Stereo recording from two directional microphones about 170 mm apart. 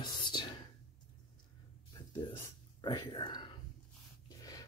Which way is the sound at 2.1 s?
25° left (ahead or behind).